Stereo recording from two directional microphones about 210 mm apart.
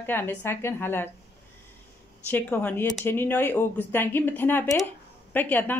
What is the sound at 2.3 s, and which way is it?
Speech, 10° left (ahead or behind).